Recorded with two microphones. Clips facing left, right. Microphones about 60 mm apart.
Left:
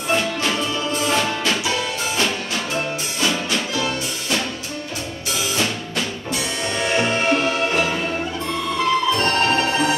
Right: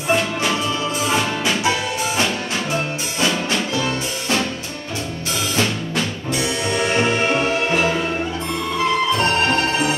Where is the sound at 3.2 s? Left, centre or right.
Right.